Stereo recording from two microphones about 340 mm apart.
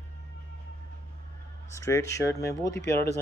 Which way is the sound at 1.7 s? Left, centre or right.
Centre.